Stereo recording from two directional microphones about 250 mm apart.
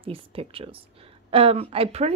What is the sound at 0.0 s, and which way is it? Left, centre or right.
Speech, right.